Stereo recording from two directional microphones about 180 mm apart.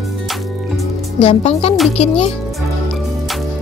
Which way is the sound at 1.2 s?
35° left (ahead or behind).